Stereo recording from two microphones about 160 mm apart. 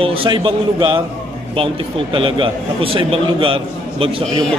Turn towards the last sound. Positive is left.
turn(degrees=-35)  # may be behind; listen again after turning